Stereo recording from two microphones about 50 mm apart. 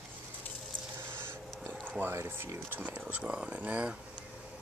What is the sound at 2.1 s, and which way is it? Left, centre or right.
Speech, right.